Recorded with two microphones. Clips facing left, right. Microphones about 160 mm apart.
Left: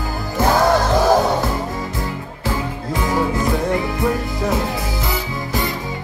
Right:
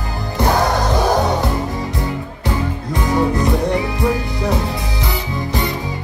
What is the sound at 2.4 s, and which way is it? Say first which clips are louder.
Music: right 1 dB; centre (ahead or behind).